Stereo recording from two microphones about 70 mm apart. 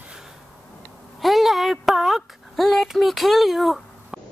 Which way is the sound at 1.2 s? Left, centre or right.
Centre.